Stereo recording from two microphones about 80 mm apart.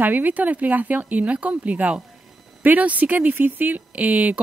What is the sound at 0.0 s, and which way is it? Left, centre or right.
Speech, right.